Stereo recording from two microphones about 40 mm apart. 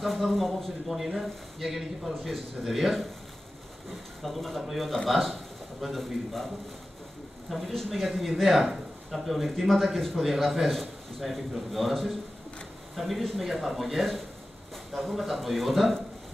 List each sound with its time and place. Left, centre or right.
0.0 s a man's voice: centre
4.2 s a man's voice: centre